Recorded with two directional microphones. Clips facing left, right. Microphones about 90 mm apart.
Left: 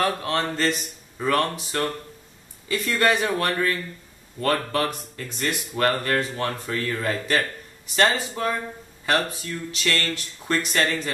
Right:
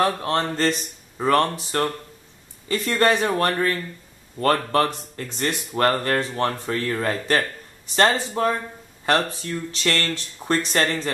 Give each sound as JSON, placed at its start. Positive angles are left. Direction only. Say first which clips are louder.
{"t": 0.0, "sound": "speech", "louder": "right 2 dB", "side_deg": -30}